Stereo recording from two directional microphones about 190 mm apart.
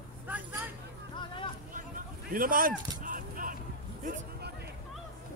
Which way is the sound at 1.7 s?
45° right (ahead or behind).